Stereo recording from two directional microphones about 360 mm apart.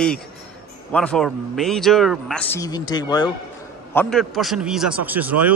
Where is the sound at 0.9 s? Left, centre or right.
Centre.